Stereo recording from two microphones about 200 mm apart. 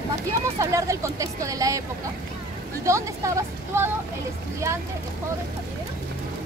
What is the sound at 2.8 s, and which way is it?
Speech, 15° right (ahead or behind).